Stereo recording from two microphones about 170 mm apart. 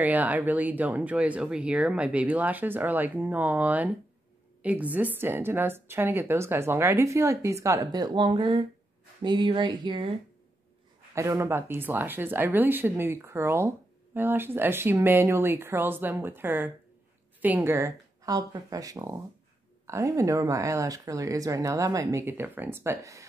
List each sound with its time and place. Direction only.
0.0 s a woman's voice: 10° right (ahead or behind); by 10.0 s 25° right (ahead or behind)
11.1 s a woman's voice: 15° right (ahead or behind)